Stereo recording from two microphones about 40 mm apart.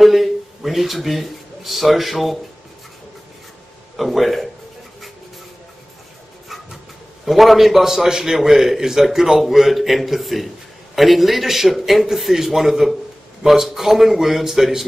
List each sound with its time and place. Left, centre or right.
0.0 s speech: centre
3.9 s a man's voice: centre
7.2 s a man's voice: centre